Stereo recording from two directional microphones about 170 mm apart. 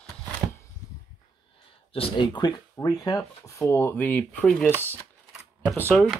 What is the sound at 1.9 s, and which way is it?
Speech, 30° left (ahead or behind).